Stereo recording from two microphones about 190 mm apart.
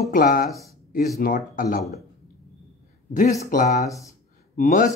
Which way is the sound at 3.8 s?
15° left (ahead or behind).